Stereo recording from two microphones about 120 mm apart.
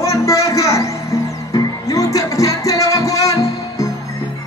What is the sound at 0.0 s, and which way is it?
Music, 25° left (ahead or behind).